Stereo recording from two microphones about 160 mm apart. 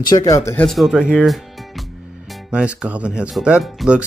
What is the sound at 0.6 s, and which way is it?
Speech, centre (ahead or behind).